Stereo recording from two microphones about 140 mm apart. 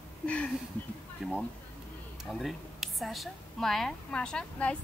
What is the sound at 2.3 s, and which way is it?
A woman's voice, centre (ahead or behind).